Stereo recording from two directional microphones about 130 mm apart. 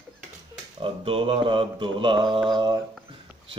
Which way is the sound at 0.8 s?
45° right (ahead or behind).